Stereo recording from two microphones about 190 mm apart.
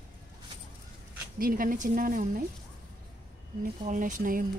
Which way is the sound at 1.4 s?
45° right (ahead or behind).